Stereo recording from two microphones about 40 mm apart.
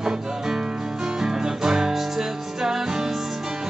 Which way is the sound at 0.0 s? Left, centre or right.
Centre.